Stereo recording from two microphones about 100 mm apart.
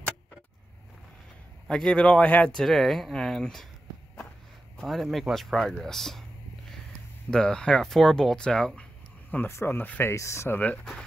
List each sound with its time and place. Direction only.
1.7 s speech: 5° left (ahead or behind)
4.7 s speech: centre (ahead or behind)
7.2 s speech: 10° left (ahead or behind)
9.3 s speech: 25° left (ahead or behind)
10.6 s speech: 10° left (ahead or behind)